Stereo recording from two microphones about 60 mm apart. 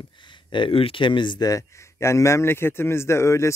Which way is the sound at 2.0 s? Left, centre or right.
Left.